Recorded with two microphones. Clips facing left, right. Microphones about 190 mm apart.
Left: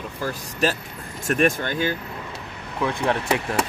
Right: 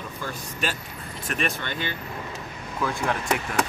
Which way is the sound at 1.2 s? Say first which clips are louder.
Left 9 dB; 45° left (ahead or behind).